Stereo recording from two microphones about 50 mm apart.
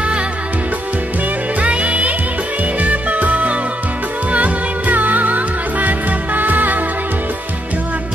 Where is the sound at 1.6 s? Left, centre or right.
Right.